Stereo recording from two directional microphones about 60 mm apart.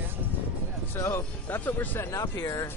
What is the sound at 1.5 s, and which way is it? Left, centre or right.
Speech, left.